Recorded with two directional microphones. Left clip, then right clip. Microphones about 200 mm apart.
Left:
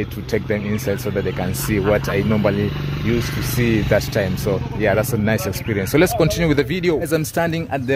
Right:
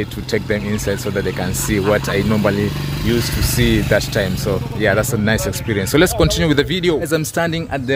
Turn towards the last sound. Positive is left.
turn(degrees=5)  # may be behind; listen again after turning